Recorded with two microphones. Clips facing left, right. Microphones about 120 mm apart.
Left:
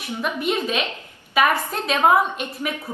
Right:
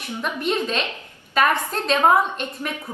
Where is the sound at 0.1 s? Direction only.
10° left (ahead or behind).